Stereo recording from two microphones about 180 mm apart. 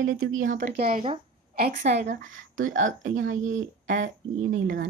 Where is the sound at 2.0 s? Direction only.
45° right (ahead or behind).